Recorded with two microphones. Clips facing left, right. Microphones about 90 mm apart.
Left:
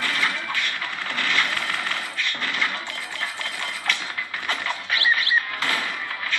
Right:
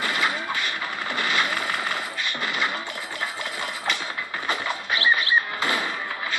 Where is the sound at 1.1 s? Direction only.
15° right (ahead or behind).